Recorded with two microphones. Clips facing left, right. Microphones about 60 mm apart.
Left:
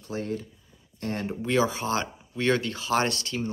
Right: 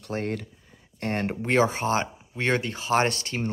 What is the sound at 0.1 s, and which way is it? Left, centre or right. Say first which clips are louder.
Speech: right 2 dB; right.